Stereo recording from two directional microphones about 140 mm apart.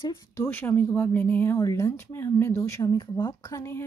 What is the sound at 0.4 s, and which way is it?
Speech, 15° left (ahead or behind).